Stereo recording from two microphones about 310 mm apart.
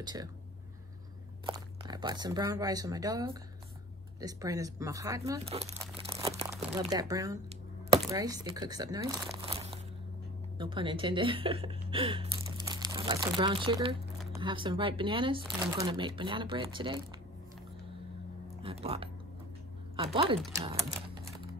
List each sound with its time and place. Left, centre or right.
0.0 s speech: centre
1.4 s a woman's voice: centre
18.6 s speech: centre